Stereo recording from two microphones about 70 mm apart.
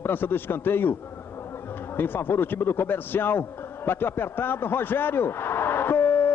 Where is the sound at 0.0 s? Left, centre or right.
Left.